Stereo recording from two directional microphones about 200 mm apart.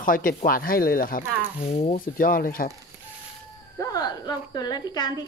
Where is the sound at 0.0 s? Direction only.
45° left (ahead or behind).